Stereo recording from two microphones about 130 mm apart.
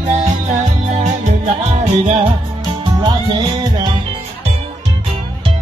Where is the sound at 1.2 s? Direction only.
60° right (ahead or behind).